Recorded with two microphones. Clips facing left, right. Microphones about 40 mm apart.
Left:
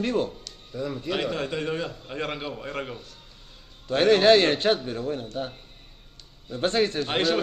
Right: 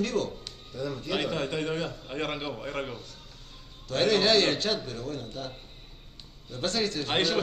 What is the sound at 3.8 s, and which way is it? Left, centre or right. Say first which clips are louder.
Speech: left 6 dB; left.